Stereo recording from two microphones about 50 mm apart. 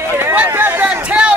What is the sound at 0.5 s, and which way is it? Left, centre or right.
Speech, right.